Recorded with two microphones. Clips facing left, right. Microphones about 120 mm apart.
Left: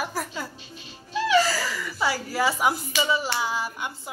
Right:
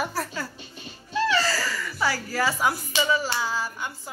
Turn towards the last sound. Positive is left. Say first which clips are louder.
# left 1 dB
turn(degrees=20)  # may be behind; listen again after turning